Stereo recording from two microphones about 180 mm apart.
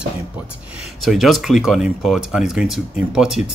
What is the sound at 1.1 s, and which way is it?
Speech, centre (ahead or behind).